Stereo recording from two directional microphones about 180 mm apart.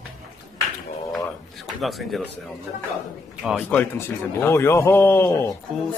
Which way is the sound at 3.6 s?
10° left (ahead or behind).